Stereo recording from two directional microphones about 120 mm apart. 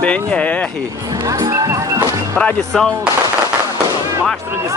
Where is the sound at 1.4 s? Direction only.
30° right (ahead or behind).